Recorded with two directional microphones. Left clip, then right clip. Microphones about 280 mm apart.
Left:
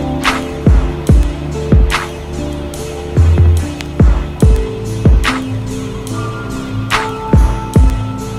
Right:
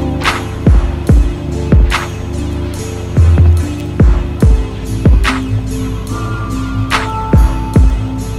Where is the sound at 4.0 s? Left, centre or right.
Left.